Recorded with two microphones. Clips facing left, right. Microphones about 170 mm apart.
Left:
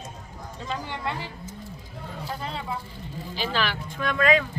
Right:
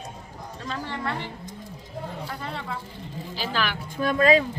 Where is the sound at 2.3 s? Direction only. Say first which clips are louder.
Left 1 dB; 20° left (ahead or behind).